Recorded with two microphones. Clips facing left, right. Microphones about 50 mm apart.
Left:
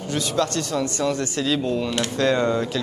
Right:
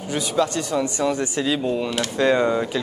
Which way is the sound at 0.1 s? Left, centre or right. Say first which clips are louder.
Right 1 dB; centre.